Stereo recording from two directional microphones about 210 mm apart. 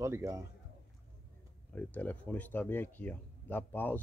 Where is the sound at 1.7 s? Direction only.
10° left (ahead or behind).